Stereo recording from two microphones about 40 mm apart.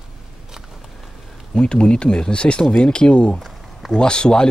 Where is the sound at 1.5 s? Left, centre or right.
Left.